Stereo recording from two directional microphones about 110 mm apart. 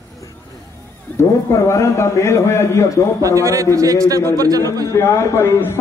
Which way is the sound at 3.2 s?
30° right (ahead or behind).